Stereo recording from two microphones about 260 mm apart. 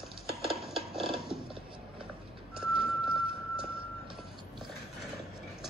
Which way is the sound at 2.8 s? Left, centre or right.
Centre.